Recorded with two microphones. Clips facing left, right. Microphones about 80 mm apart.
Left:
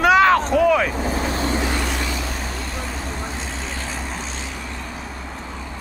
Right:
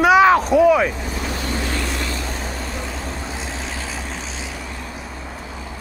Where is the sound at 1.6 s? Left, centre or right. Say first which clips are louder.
Left 2 dB; centre.